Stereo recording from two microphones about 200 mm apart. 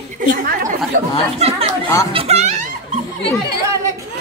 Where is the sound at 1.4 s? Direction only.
30° right (ahead or behind).